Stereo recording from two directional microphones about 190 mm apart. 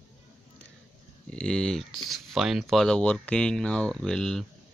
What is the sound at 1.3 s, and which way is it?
Speech, 5° left (ahead or behind).